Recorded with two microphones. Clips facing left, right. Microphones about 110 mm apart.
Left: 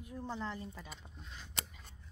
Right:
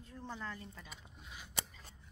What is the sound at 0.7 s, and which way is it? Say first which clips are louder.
Scissors: left 3 dB; centre (ahead or behind).